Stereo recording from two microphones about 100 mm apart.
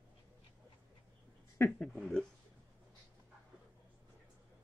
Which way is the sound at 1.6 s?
10° left (ahead or behind).